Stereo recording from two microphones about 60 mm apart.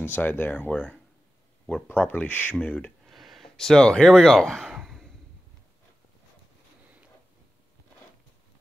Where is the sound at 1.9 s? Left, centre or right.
Left.